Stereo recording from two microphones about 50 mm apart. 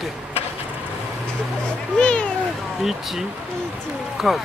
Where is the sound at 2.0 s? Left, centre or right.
Centre.